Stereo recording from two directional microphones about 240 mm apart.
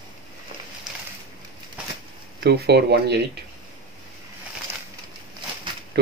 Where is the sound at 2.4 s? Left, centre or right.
Right.